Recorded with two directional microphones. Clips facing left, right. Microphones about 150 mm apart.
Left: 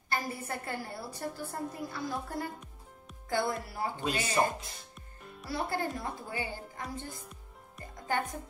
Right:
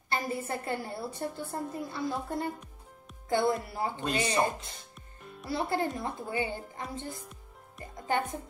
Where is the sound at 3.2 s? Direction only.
25° right (ahead or behind).